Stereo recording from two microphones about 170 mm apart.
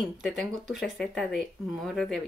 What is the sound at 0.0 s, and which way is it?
Speech, centre (ahead or behind).